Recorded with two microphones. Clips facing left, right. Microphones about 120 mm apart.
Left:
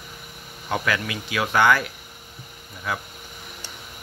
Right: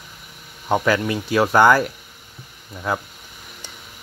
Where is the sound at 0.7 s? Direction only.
35° right (ahead or behind).